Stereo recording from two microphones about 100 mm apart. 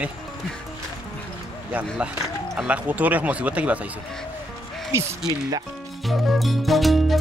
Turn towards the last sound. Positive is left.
turn(degrees=0)  # may be behind; listen again after turning